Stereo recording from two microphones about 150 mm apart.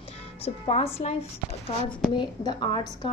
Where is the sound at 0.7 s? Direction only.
45° left (ahead or behind).